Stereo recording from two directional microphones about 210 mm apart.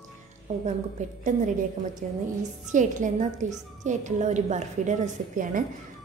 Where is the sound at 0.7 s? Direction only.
35° right (ahead or behind).